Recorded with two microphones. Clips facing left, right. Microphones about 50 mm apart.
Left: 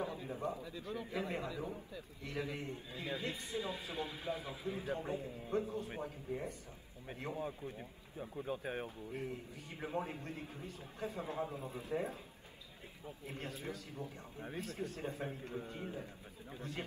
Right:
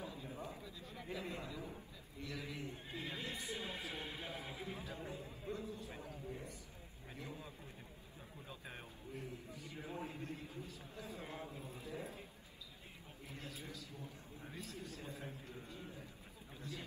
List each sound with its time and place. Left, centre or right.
0.0 s a sound: left
1.1 s a man's voice: left
3.3 s speech: right
4.6 s a man's voice: left
13.3 s a man's voice: left